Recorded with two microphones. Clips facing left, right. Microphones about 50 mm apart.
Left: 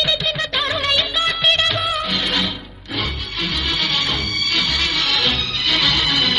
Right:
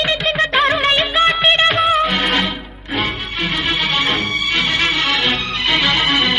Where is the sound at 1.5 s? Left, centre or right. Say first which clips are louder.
Right 4 dB; right.